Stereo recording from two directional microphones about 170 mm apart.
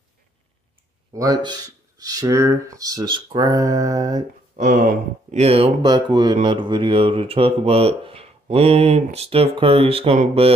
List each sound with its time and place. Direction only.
1.1 s speech: 20° right (ahead or behind)
4.6 s a sound: 55° right (ahead or behind)
5.4 s speech: 35° right (ahead or behind)